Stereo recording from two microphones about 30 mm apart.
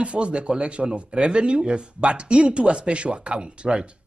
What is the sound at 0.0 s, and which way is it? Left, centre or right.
Speech, right.